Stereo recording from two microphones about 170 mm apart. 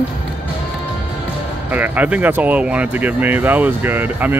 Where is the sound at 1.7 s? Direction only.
10° right (ahead or behind).